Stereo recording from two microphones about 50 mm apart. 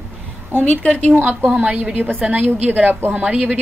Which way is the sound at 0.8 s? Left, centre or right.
Left.